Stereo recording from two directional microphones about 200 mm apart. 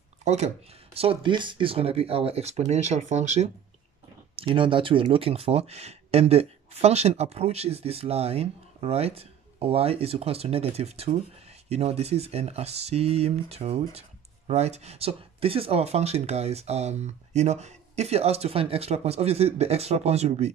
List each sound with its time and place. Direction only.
0.2 s a sound: 35° right (ahead or behind)
0.9 s speech: 25° right (ahead or behind)
4.4 s speech: 25° right (ahead or behind)